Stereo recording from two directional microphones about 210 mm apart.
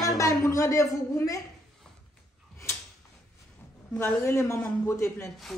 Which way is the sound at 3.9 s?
10° left (ahead or behind).